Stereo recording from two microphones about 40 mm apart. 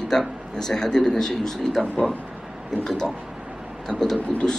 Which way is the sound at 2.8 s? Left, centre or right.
Centre.